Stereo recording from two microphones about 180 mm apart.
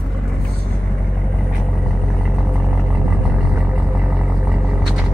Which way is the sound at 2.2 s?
5° right (ahead or behind).